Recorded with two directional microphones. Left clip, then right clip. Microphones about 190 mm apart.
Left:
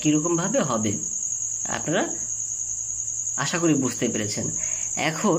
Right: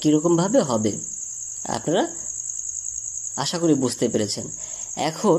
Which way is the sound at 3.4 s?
25° right (ahead or behind).